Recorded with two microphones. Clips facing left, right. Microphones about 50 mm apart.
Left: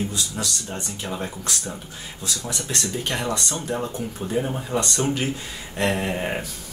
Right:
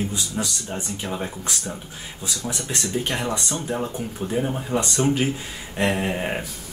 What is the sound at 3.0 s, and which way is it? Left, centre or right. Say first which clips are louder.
Speech: right 2 dB; centre.